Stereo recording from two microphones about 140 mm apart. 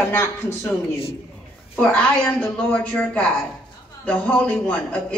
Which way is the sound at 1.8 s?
10° left (ahead or behind).